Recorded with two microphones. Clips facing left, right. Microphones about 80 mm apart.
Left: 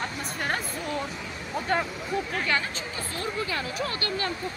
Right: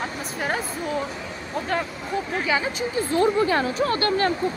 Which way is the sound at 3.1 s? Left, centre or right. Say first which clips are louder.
Right 12 dB; right.